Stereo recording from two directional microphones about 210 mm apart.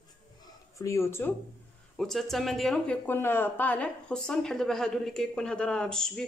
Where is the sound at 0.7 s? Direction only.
15° left (ahead or behind).